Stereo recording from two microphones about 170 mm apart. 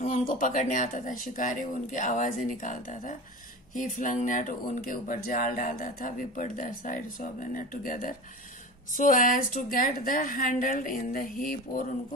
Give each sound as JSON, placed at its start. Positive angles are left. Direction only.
{"t": 0.0, "sound": "a woman's voice", "side_deg": 50}